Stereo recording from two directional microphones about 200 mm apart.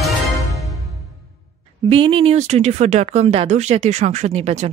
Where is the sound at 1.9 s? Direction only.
25° right (ahead or behind).